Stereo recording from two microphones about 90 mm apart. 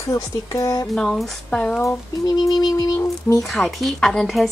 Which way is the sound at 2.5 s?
45° left (ahead or behind).